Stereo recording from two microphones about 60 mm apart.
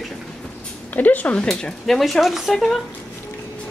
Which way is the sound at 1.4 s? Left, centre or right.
Centre.